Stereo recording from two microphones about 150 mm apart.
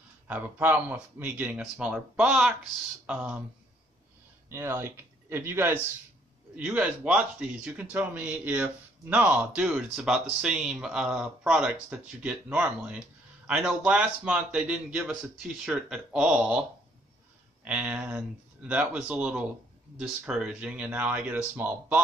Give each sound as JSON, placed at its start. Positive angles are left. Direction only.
{"t": 0.3, "sound": "speech", "side_deg": -10}
{"t": 4.5, "sound": "speech", "side_deg": -15}
{"t": 17.6, "sound": "speech", "side_deg": -5}